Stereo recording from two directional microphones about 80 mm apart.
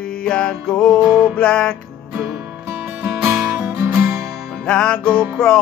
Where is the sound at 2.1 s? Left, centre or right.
Right.